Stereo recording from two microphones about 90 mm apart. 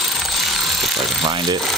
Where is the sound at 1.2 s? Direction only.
50° right (ahead or behind).